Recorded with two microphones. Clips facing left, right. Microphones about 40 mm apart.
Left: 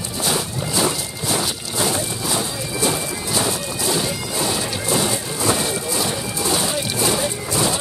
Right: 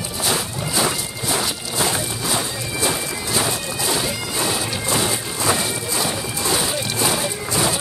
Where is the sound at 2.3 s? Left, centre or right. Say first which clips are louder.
Left 1 dB; centre.